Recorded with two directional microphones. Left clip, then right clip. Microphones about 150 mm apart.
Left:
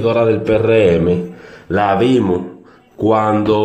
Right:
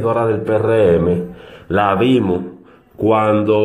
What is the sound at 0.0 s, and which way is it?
Speech, 20° left (ahead or behind).